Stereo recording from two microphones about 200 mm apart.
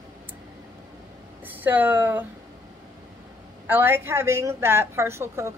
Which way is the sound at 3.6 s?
10° right (ahead or behind).